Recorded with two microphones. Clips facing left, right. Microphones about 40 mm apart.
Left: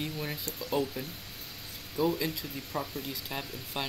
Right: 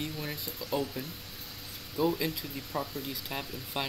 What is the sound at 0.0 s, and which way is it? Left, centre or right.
Speech, centre.